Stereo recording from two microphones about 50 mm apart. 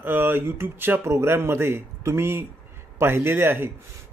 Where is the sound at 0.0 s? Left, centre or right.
Right.